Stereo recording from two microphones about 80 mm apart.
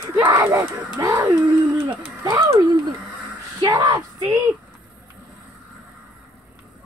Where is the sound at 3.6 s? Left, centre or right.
Right.